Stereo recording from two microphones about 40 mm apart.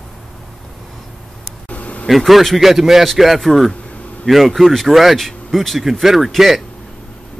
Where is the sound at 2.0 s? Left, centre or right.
Centre.